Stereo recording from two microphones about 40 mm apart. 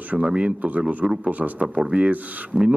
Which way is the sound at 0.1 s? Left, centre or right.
Right.